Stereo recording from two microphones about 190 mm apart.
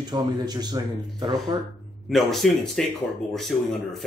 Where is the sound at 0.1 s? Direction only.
20° right (ahead or behind).